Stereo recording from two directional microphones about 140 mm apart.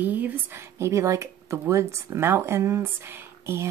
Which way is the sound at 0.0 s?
10° right (ahead or behind).